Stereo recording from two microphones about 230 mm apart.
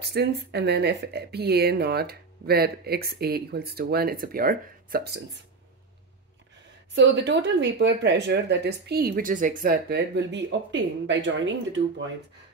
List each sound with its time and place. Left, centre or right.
0.0 s speech: right
7.0 s speech: right